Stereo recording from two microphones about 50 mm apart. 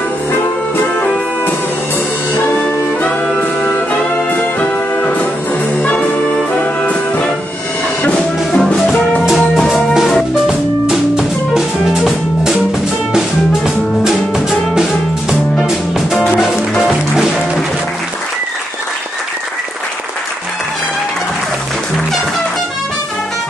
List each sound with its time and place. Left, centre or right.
3.3 s music: left
4.3 s music: left
6.6 s music: left
8.5 s music: centre
10.4 s music: centre
14.0 s music: centre